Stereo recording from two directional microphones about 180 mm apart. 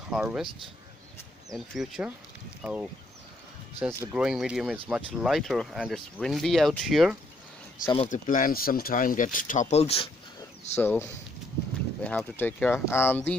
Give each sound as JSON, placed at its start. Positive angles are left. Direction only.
{"t": 0.1, "sound": "speech", "side_deg": -5}
{"t": 1.5, "sound": "speech", "side_deg": -5}
{"t": 4.1, "sound": "speech", "side_deg": -5}
{"t": 7.8, "sound": "speech", "side_deg": 25}
{"t": 8.1, "sound": "speech", "side_deg": 50}
{"t": 10.8, "sound": "speech", "side_deg": 10}